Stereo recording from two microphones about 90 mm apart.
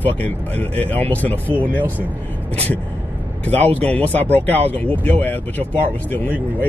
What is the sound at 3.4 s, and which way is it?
A man's voice, 20° left (ahead or behind).